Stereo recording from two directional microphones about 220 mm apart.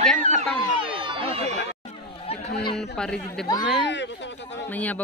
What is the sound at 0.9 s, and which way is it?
Run, 25° right (ahead or behind).